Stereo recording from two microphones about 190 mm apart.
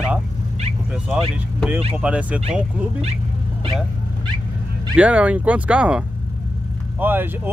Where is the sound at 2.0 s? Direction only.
5° right (ahead or behind).